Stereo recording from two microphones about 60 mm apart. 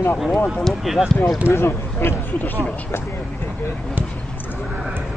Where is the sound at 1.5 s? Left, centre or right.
Left.